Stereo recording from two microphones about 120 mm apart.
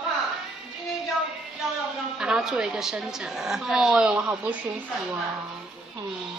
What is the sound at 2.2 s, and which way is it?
A woman's voice, 5° right (ahead or behind).